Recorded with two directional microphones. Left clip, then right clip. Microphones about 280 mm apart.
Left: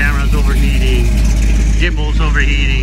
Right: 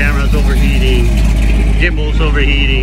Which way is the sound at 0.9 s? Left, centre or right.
Right.